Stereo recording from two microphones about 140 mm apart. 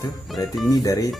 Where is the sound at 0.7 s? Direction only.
25° left (ahead or behind).